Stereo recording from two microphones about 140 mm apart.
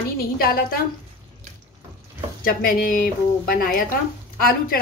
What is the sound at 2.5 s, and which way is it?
Speech, 90° left.